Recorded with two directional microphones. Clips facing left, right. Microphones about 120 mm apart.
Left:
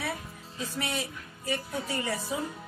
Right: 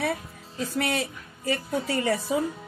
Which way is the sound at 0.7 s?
80° right.